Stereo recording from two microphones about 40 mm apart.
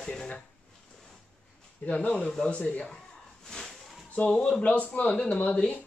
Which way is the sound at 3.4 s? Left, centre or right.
Centre.